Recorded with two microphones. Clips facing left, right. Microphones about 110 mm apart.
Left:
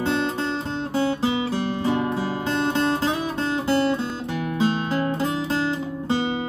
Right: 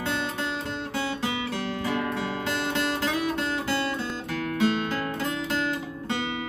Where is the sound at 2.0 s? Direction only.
30° left (ahead or behind).